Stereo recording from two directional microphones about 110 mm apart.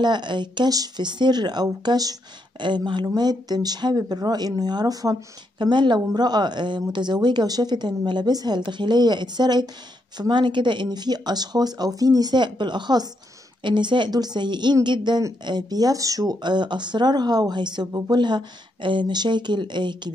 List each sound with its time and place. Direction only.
0.0 s speech: 45° right (ahead or behind)